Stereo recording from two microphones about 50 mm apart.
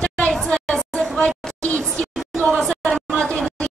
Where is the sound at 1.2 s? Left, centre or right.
Centre.